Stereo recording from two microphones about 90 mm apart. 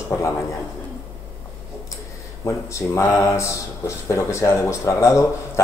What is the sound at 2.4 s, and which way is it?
Speech, 35° left (ahead or behind).